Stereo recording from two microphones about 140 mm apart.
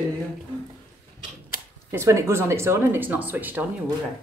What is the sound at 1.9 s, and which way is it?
Speech, 20° right (ahead or behind).